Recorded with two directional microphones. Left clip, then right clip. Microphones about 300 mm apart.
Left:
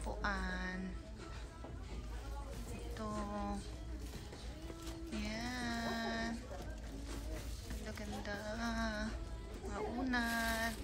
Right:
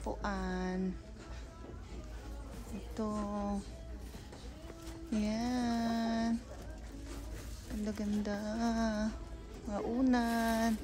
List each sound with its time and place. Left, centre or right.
0.0 s a woman's voice: centre
3.0 s a woman's voice: centre
5.2 s a sound: centre
7.8 s a woman's voice: centre